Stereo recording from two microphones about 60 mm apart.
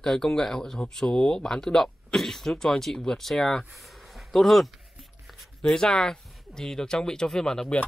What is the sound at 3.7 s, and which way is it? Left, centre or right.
Speech, centre.